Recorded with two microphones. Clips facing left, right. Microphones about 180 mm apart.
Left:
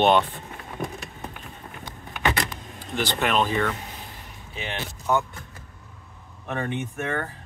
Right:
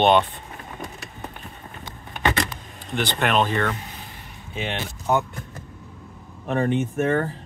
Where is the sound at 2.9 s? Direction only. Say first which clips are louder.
Right 2 dB; centre (ahead or behind).